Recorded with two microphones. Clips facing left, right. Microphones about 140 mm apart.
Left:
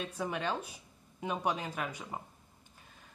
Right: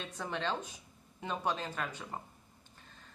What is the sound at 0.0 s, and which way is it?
Speech, 10° left (ahead or behind).